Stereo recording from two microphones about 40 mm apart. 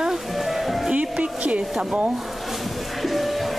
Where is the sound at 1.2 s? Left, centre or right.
Right.